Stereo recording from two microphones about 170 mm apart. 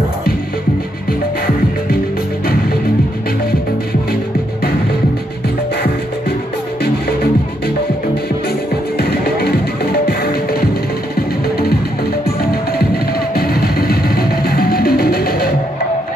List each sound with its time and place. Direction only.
8.9 s music: 65° left (ahead or behind)
12.3 s music: 65° left (ahead or behind)